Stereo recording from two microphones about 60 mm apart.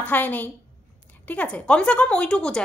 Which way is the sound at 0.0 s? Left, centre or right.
Left.